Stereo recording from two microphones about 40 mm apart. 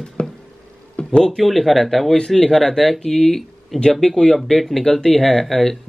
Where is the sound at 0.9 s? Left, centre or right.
Left.